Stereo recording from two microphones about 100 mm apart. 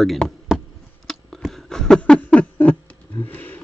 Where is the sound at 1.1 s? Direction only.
Centre (ahead or behind).